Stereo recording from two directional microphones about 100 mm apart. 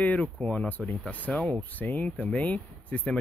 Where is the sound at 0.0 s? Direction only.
15° left (ahead or behind).